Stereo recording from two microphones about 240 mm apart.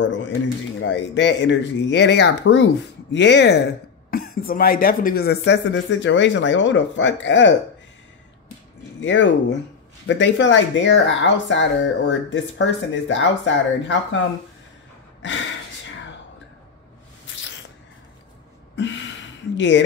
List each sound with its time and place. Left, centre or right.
0.0 s speech: left
9.0 s speech: left
18.8 s a sound: left